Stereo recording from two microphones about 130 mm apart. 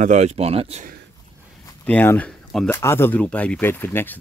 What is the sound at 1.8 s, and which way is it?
Speech, 15° left (ahead or behind).